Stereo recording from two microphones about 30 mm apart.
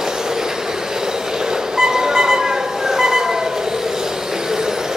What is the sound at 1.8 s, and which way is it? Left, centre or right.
Train, right.